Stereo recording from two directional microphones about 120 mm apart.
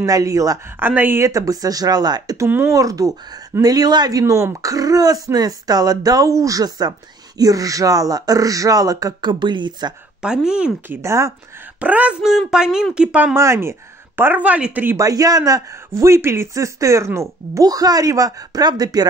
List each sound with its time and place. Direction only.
0.0 s speech: 30° right (ahead or behind)
0.7 s speech: 15° right (ahead or behind)
1.2 s speech: 30° right (ahead or behind)
10.2 s speech: 5° right (ahead or behind)
10.9 s speech: 25° right (ahead or behind)
11.8 s speech: 10° right (ahead or behind)
13.4 s speech: 25° right (ahead or behind)
15.0 s speech: 30° right (ahead or behind)